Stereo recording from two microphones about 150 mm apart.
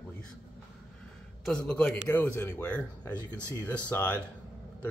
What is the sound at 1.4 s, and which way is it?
Speech, 5° left (ahead or behind).